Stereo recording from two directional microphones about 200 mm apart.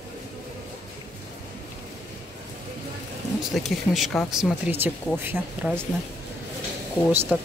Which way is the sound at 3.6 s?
Centre (ahead or behind).